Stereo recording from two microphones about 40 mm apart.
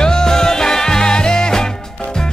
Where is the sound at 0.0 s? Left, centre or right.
Centre.